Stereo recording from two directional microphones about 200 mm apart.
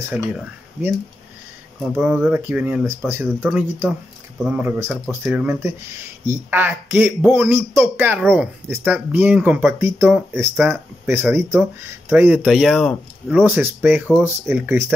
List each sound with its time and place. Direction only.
0.1 s speech: 5° right (ahead or behind)
13.4 s speech: 10° right (ahead or behind)